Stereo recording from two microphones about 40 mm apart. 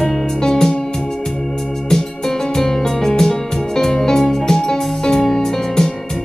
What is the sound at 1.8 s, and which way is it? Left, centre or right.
Music, centre.